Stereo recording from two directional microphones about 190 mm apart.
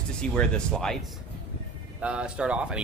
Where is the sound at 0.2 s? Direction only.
5° left (ahead or behind).